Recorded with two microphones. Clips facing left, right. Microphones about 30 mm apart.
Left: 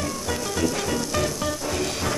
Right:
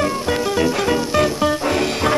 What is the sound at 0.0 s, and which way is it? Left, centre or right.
Music, right.